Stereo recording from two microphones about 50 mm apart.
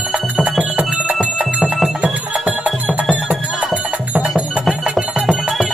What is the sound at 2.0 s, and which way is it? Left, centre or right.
Music, centre.